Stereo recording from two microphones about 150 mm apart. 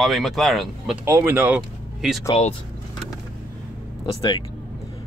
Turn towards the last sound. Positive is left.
turn(degrees=30)  # may be behind; listen again after turning